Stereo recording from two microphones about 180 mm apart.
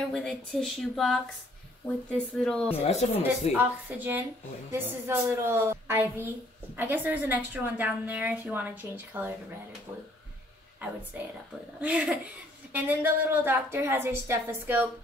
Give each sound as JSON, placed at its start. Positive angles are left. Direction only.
{"t": 0.1, "sound": "speech", "side_deg": 5}
{"t": 2.9, "sound": "speech", "side_deg": 35}
{"t": 3.5, "sound": "a woman's voice", "side_deg": -10}
{"t": 11.8, "sound": "a woman's voice", "side_deg": -5}